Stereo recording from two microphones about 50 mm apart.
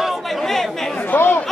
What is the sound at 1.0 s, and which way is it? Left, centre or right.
Chatter, left.